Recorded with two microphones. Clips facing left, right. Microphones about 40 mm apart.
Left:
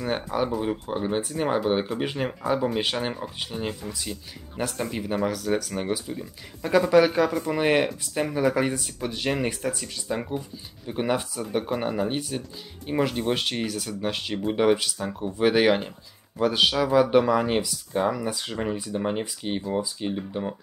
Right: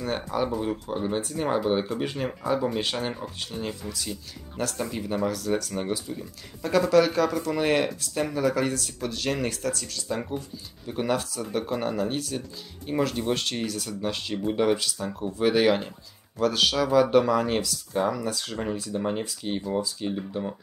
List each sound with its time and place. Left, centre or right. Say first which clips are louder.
0.0 s speech: left 1 dB; centre